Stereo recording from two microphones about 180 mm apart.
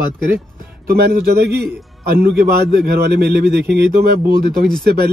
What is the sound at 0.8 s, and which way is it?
A man's voice, 60° right (ahead or behind).